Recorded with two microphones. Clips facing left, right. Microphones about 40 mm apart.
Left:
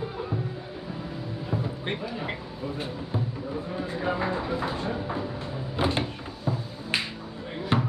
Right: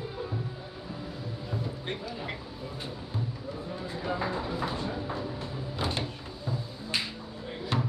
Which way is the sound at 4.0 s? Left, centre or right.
Left.